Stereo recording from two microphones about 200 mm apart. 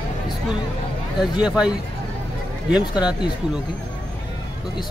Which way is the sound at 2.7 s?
5° right (ahead or behind).